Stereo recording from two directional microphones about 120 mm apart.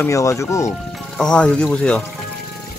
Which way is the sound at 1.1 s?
5° left (ahead or behind).